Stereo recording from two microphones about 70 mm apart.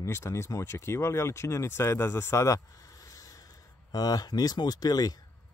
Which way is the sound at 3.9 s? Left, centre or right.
Left.